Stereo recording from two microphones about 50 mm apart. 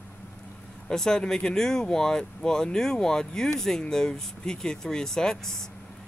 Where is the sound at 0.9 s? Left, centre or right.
Centre.